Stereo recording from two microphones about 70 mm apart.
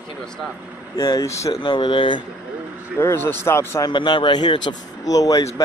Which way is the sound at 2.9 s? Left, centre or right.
Left.